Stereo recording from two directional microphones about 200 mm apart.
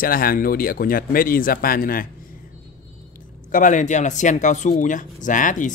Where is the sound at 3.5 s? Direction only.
40° left (ahead or behind).